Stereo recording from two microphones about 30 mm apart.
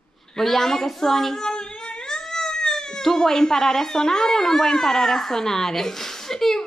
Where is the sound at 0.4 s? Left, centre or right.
Centre.